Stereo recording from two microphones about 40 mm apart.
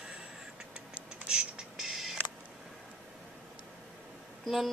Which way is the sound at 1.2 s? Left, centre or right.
Centre.